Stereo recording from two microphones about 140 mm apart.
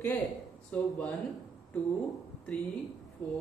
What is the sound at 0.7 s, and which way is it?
Speech, 10° left (ahead or behind).